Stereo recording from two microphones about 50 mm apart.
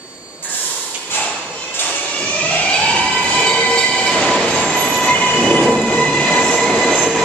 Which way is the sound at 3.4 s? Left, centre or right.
Left.